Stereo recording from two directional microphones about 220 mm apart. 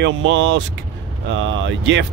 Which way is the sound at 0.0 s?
55° right (ahead or behind).